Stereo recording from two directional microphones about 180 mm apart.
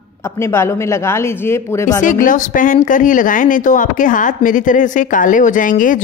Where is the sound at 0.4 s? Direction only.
15° left (ahead or behind).